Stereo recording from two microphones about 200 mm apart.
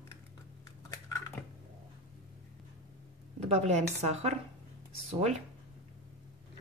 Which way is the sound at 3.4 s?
35° right (ahead or behind).